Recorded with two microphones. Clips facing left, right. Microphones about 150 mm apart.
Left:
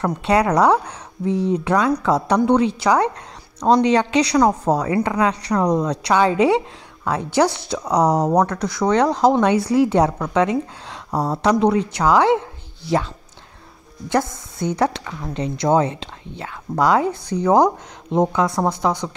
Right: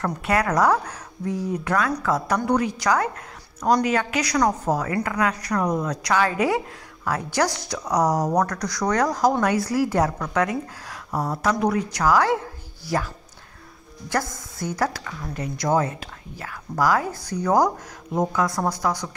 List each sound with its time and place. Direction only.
0.0 s speech: 25° left (ahead or behind)
18.1 s speech: 25° left (ahead or behind)